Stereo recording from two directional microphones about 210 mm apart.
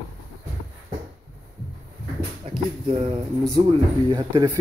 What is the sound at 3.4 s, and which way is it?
Speech, 20° right (ahead or behind).